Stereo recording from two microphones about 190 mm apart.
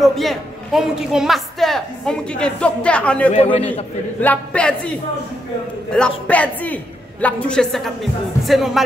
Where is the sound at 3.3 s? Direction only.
30° left (ahead or behind).